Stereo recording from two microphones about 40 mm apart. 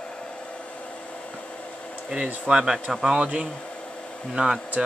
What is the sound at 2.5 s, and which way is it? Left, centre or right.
Speech, centre.